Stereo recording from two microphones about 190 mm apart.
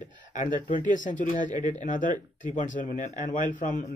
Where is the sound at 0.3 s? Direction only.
40° left (ahead or behind).